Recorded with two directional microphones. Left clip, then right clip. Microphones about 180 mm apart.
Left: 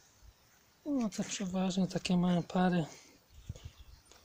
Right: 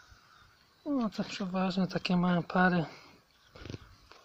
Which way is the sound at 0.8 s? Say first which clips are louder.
Right 2 dB; centre (ahead or behind).